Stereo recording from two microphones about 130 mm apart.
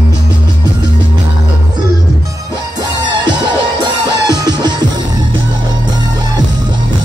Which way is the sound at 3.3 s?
35° right (ahead or behind).